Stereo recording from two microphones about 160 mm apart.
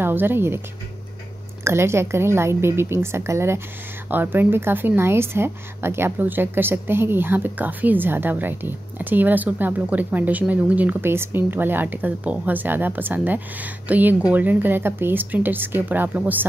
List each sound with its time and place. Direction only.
0.0 s speech: 15° right (ahead or behind)
1.6 s a woman's voice: 15° right (ahead or behind)